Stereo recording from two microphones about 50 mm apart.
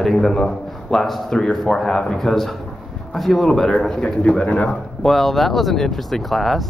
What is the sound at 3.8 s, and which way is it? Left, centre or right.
Speech, centre.